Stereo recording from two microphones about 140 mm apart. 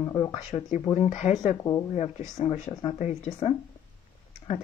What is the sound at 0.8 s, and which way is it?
Speech, 45° left (ahead or behind).